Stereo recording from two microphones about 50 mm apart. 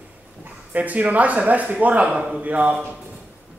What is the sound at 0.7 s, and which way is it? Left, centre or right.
Speech, right.